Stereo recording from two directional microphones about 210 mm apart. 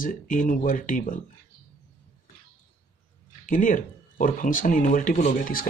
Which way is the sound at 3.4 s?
40° left (ahead or behind).